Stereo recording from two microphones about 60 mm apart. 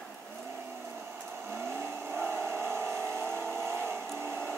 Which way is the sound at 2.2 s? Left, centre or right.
Right.